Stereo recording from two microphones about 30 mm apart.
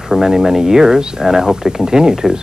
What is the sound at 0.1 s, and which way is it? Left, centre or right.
Speech, centre.